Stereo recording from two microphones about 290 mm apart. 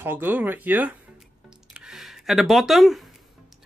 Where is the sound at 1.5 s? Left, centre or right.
Centre.